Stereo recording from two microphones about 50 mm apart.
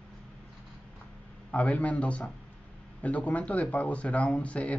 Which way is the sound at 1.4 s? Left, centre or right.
Left.